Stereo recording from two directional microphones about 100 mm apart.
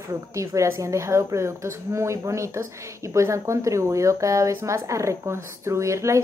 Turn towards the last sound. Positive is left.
turn(degrees=-30)  # may be behind; listen again after turning